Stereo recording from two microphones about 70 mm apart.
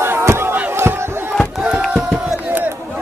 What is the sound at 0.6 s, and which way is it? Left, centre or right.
Battle cry, right.